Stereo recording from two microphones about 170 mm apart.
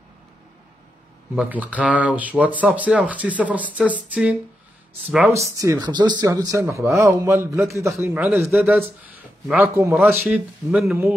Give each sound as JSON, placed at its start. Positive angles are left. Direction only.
{"t": 1.3, "sound": "speech", "side_deg": -10}